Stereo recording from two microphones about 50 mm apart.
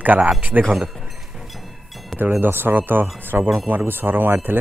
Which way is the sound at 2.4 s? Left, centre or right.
Right.